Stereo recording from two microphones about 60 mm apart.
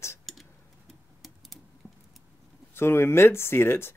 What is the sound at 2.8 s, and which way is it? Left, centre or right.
Speech, left.